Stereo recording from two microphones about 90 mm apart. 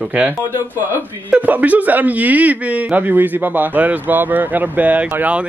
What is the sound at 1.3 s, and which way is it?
Speech, 15° right (ahead or behind).